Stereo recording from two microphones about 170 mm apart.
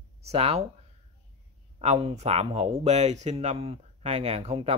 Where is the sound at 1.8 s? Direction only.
35° right (ahead or behind).